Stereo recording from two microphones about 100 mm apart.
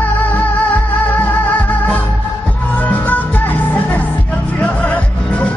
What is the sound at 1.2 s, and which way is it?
Music, 15° left (ahead or behind).